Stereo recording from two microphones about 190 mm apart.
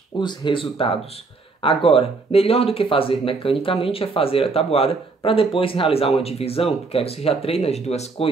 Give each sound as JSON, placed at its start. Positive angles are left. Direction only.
{"t": 0.2, "sound": "speech", "side_deg": 25}